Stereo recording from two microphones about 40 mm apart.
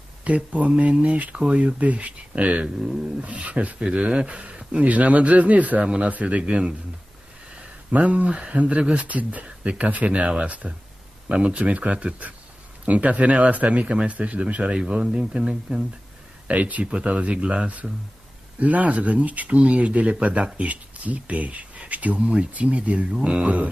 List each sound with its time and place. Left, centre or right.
0.2 s speech: right
3.8 s speech: right
4.8 s speech: right
6.4 s speech: right
7.9 s speech: right
14.7 s speech: centre
16.4 s speech: right
16.8 s speech: right
23.4 s speech: right